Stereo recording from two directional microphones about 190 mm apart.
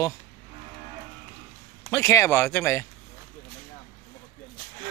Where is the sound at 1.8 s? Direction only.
15° left (ahead or behind).